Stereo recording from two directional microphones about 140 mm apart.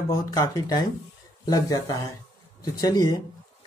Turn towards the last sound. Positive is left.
turn(degrees=30)  # may be behind; listen again after turning